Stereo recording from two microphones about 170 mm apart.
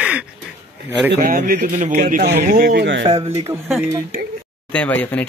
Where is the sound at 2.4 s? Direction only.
60° right (ahead or behind); by 3.0 s 85° right.